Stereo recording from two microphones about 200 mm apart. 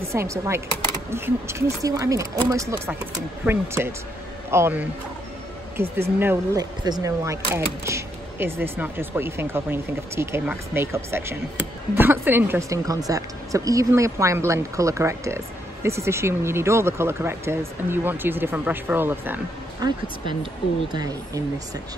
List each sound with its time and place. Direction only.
0.1 s a woman's voice: 15° right (ahead or behind)
20.9 s speech: 20° right (ahead or behind)